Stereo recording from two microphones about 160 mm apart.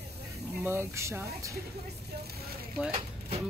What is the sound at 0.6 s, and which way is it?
Speech, 15° right (ahead or behind).